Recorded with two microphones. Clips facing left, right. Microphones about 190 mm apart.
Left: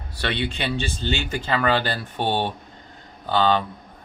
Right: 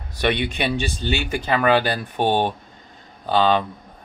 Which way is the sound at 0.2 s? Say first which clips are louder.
Right 4 dB; 15° right (ahead or behind).